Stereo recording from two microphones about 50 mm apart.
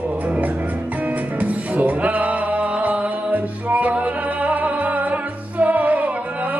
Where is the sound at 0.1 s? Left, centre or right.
Right.